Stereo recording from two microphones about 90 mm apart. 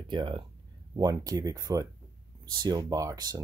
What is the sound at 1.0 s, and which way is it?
Speech, 45° right (ahead or behind).